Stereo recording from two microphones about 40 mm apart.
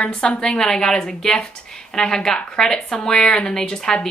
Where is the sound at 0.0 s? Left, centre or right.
Left.